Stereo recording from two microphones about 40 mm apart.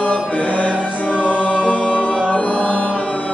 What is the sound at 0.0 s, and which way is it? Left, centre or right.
Music, left.